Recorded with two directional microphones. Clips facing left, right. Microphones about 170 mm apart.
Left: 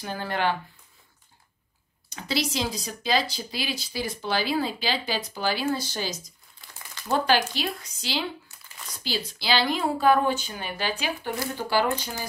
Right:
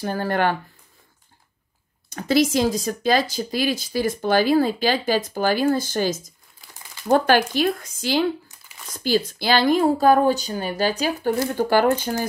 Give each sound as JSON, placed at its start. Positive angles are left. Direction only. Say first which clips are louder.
{"t": 0.0, "sound": "speech", "louder": "right 6 dB", "side_deg": -50}
{"t": 2.0, "sound": "speech", "louder": "right 10 dB", "side_deg": -50}